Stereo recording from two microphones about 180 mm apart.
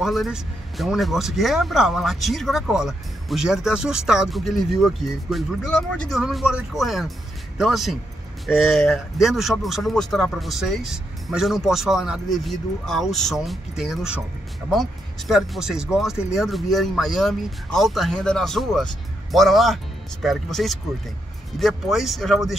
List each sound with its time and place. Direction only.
0.0 s speech: centre (ahead or behind)